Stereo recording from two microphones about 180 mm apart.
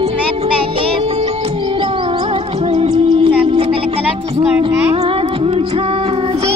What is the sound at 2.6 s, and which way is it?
Music, 30° right (ahead or behind).